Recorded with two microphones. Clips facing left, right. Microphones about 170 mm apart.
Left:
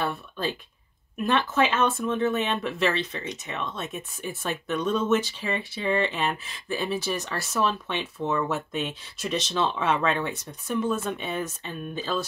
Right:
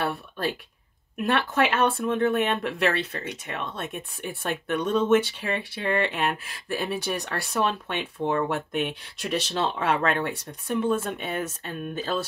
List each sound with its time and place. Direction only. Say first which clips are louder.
0.0 s speech: right 1 dB; 65° right (ahead or behind)